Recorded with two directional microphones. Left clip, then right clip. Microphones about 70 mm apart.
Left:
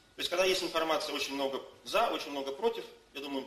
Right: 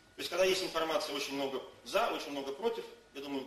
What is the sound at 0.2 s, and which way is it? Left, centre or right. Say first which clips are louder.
A man's voice: left 1 dB; left.